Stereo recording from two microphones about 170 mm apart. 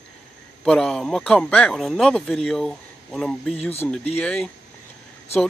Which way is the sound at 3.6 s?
35° left (ahead or behind).